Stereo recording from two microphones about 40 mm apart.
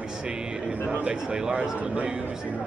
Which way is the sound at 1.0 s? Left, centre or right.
Right.